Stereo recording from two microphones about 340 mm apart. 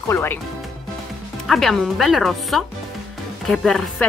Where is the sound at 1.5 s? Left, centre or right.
Centre.